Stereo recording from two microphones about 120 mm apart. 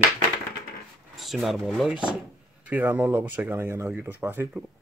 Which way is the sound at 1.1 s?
Centre (ahead or behind).